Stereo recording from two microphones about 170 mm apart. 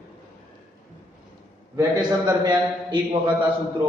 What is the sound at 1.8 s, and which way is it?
A man's voice, 25° right (ahead or behind).